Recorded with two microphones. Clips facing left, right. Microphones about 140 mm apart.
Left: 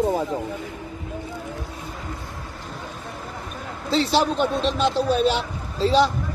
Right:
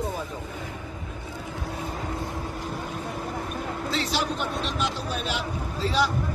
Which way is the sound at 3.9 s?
30° left (ahead or behind).